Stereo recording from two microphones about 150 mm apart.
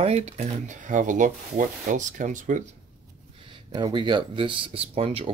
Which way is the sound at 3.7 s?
30° right (ahead or behind).